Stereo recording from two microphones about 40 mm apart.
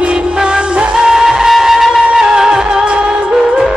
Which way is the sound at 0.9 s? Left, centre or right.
Centre.